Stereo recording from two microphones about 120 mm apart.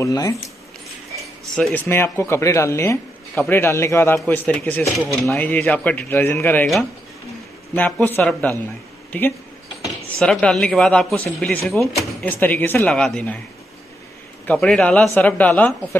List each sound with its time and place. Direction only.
0.0 s speech: 30° left (ahead or behind)
1.5 s speech: 5° left (ahead or behind)
1.9 s speech: 20° left (ahead or behind)
4.5 s speech: 10° left (ahead or behind)
5.3 s speech: 15° left (ahead or behind)
8.2 s speech: 10° left (ahead or behind)
10.2 s speech: 5° left (ahead or behind)
12.3 s speech: 15° left (ahead or behind)
14.5 s speech: 10° left (ahead or behind)